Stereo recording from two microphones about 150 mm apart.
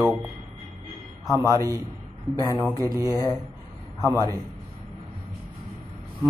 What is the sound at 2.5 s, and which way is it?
Speech, 20° right (ahead or behind).